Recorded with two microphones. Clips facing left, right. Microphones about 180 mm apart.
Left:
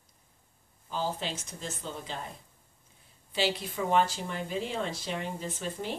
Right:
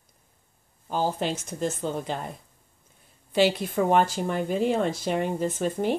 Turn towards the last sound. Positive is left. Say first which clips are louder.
# right 10 dB
turn(degrees=-50)  # may be behind; listen again after turning